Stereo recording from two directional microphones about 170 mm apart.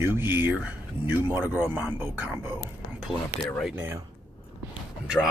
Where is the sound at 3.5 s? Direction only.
Centre (ahead or behind).